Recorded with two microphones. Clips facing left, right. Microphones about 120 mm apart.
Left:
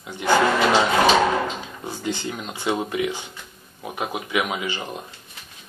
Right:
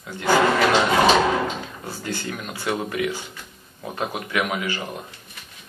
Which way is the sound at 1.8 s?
20° left (ahead or behind).